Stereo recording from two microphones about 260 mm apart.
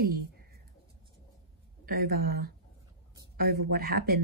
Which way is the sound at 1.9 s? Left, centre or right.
Right.